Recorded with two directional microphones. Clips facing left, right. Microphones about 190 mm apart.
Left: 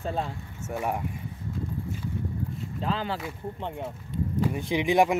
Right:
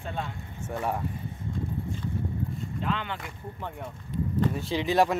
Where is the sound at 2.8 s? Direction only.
35° left (ahead or behind).